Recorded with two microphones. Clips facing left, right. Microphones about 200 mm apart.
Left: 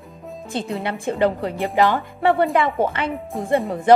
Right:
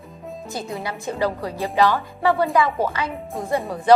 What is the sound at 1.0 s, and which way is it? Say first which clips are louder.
Speech: left 4 dB; 25° left (ahead or behind).